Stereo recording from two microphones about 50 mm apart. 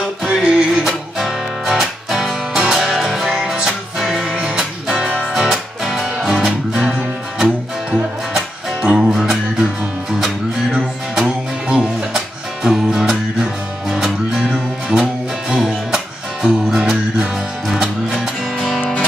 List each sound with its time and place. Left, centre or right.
0.2 s music: centre
1.1 s music: centre
4.3 s music: centre
8.8 s music: right
9.1 s music: centre
10.7 s music: centre